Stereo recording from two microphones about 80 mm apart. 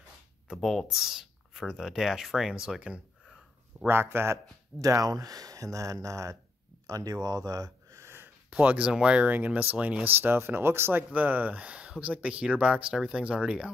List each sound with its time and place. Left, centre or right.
0.6 s speech: centre
3.8 s a man's voice: right
4.8 s speech: right
8.5 s speech: centre